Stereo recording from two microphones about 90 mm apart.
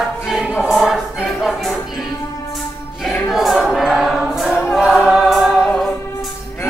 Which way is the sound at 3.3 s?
5° right (ahead or behind).